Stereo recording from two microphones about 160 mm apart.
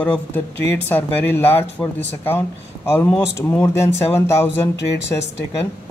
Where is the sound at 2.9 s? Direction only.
10° left (ahead or behind).